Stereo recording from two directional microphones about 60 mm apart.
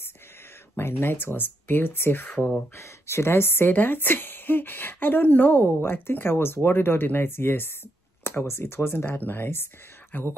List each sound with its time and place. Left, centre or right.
1.0 s a woman's voice: left
2.7 s a woman's voice: left